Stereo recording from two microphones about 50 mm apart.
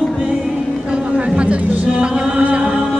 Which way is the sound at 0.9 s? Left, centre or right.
Right.